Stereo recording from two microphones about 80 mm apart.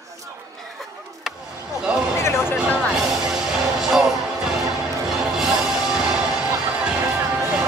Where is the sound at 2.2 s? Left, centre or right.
Left.